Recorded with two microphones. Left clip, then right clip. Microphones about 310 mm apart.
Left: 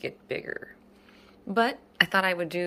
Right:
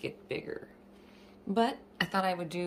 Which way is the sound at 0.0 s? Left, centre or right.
Centre.